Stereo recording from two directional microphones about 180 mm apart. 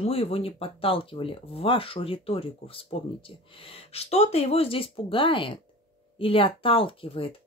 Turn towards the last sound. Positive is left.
turn(degrees=30)  # may be behind; listen again after turning